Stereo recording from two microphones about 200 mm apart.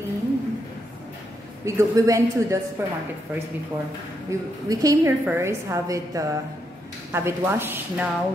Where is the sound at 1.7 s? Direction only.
15° right (ahead or behind).